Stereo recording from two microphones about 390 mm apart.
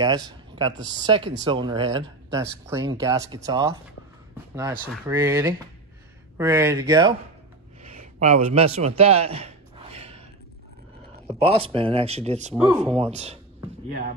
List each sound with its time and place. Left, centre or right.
0.0 s speech: centre
7.8 s a sound: centre
11.2 s speech: centre
12.6 s speech: centre
12.9 s speech: centre